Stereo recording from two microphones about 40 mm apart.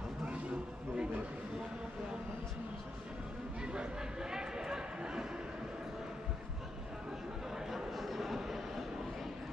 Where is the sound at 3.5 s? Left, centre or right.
Right.